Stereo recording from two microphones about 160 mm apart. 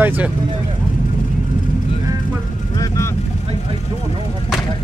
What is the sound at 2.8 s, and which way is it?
Vehicle, 20° left (ahead or behind).